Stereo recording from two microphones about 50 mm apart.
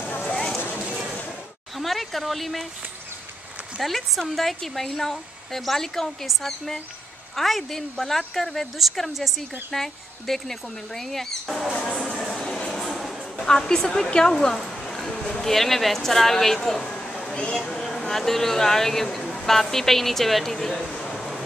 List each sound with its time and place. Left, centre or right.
1.8 s speech: centre
3.8 s a woman's voice: centre
11.7 s speech: centre
12.1 s train: centre
12.7 s a sound: centre
13.5 s a woman's voice: centre
16.9 s a sound: centre
17.8 s speech: centre